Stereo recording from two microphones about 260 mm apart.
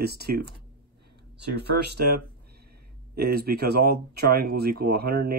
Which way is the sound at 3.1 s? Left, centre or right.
Right.